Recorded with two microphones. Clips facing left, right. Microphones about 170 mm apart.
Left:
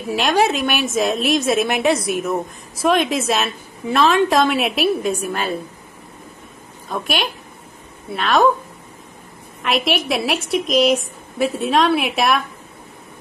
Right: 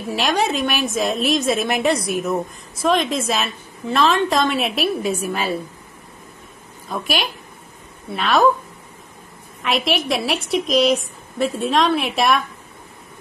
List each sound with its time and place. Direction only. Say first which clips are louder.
0.1 s a woman's voice: left 3 dB; centre (ahead or behind)
6.9 s a woman's voice: left 1 dB; centre (ahead or behind)
9.6 s a woman's voice: left 1 dB; centre (ahead or behind)